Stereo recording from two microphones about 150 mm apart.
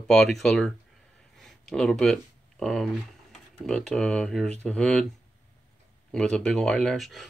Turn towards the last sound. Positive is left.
turn(degrees=0)  # may be behind; listen again after turning